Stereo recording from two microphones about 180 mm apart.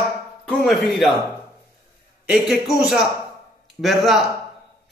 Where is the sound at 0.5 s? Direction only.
Centre (ahead or behind).